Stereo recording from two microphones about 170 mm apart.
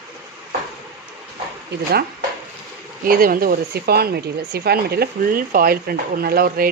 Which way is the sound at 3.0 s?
55° right (ahead or behind).